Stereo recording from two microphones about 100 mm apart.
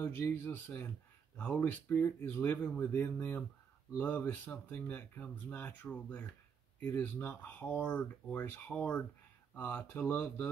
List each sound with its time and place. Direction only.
0.0 s speech: 25° left (ahead or behind)